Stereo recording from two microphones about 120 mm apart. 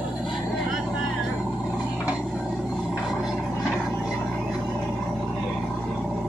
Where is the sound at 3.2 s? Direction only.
Centre (ahead or behind).